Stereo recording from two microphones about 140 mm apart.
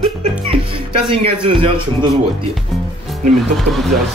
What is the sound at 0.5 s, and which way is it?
Music, 40° right (ahead or behind).